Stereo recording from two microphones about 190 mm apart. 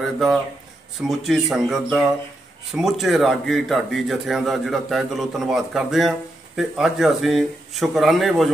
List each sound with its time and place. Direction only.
0.0 s a man's voice: centre (ahead or behind)